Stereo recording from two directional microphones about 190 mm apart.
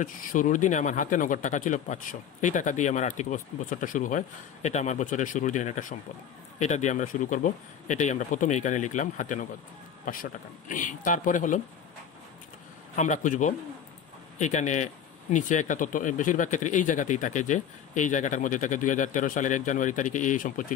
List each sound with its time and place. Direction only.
0.0 s speech: 45° left (ahead or behind)
10.7 s speech: 45° left (ahead or behind)
12.9 s speech: 40° left (ahead or behind)